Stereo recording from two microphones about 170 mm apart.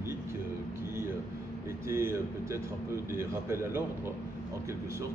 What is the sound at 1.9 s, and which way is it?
A man's voice, 15° right (ahead or behind).